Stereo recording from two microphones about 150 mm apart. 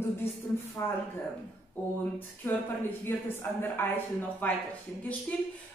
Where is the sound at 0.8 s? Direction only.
15° left (ahead or behind).